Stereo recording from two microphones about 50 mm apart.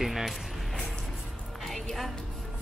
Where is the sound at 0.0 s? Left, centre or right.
Centre.